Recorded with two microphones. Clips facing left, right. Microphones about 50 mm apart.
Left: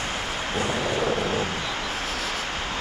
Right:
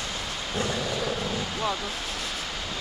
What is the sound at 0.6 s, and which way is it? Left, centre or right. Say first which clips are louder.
Vehicle: left 3 dB; left.